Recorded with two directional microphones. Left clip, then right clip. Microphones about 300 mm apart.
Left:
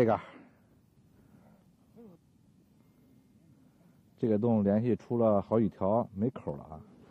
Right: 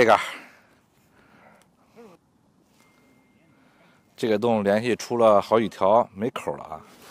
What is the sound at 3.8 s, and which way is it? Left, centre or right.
Speech, centre.